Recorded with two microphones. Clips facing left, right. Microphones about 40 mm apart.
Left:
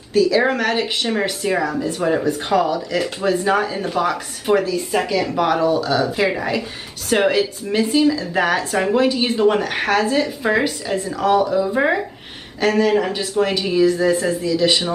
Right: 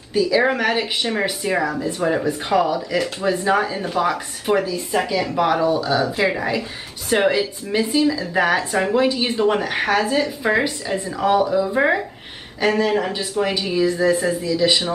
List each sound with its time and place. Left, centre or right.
0.1 s speech: centre
11.5 s speech: centre